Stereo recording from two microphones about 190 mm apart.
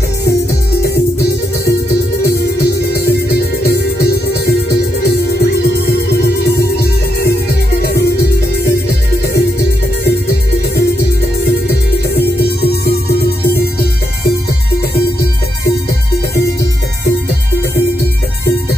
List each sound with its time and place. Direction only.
2.9 s music: 55° left (ahead or behind)
12.4 s music: 55° left (ahead or behind)